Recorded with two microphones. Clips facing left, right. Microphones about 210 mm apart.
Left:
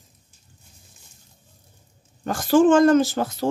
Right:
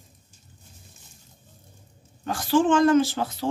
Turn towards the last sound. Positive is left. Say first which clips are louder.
# left 3 dB
turn(degrees=45)  # may be behind; listen again after turning